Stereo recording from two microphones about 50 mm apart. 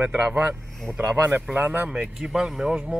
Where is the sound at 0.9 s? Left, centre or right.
Right.